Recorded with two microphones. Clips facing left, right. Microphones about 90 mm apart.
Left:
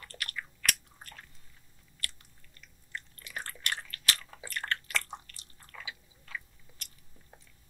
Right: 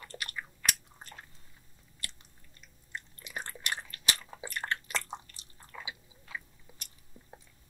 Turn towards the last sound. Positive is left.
turn(degrees=-20)  # may be behind; listen again after turning